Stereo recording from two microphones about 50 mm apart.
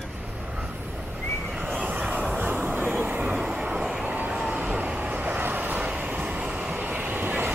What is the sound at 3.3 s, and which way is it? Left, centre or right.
Vehicle, centre.